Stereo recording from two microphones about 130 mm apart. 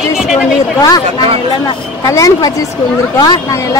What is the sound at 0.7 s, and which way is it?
Speech, 30° left (ahead or behind).